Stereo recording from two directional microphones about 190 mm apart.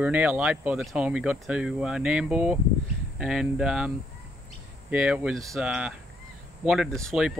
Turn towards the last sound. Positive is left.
turn(degrees=0)  # may be behind; listen again after turning